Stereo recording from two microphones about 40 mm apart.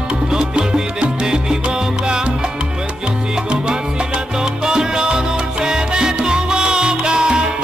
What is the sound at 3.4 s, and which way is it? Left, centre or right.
Salsa music, right.